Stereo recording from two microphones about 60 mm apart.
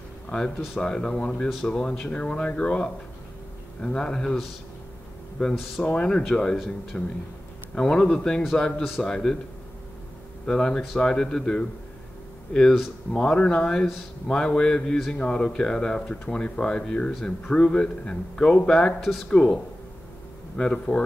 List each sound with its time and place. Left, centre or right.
0.7 s speech: centre
5.4 s speech: centre
10.4 s speech: centre
13.1 s speech: centre
17.1 s speech: centre